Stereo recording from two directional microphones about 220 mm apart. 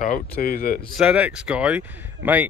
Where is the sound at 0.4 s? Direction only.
40° left (ahead or behind).